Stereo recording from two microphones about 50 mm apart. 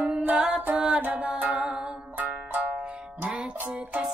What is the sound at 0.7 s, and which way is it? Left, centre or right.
Music, centre.